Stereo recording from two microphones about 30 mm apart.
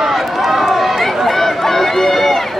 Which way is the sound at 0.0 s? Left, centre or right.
Centre.